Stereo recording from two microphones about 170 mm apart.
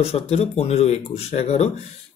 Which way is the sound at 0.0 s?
35° left (ahead or behind).